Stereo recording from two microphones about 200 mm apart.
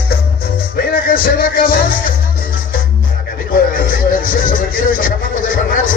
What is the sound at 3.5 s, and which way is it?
Music, 45° left (ahead or behind).